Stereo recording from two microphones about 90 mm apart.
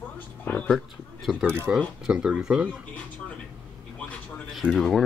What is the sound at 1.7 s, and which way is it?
Speech, 15° right (ahead or behind).